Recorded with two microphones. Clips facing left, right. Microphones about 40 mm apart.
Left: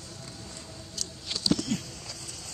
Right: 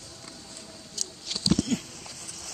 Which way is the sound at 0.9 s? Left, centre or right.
Centre.